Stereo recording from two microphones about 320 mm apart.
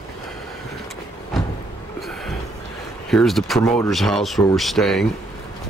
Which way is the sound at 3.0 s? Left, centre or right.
Centre.